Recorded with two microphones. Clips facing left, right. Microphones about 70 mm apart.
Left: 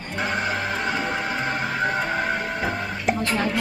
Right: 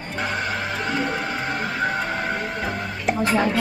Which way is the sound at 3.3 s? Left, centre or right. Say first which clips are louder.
Right 3 dB; centre.